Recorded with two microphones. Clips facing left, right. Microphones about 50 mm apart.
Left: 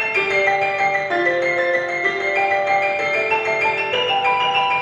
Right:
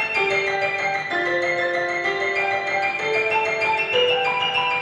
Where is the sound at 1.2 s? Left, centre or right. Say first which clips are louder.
Left 2 dB; left.